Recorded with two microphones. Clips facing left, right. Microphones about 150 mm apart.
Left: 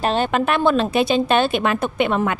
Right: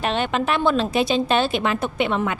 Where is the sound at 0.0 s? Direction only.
40° left (ahead or behind).